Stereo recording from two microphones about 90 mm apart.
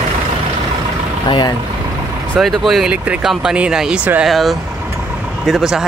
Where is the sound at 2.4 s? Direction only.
Centre (ahead or behind).